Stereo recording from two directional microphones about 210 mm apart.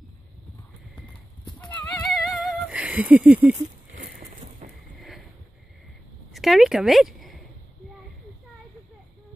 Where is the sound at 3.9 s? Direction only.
45° right (ahead or behind).